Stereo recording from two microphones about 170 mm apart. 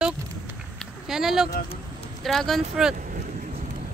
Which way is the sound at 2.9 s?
50° right (ahead or behind).